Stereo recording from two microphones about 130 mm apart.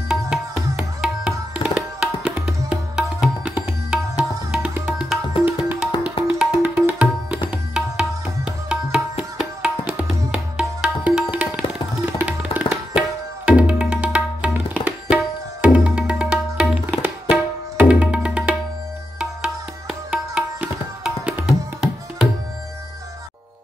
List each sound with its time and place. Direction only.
0.1 s music: 5° right (ahead or behind)
4.8 s tabla: 5° right (ahead or behind)
7.7 s music: 5° right (ahead or behind)
12.2 s tabla: 10° right (ahead or behind)
19.1 s music: 5° right (ahead or behind)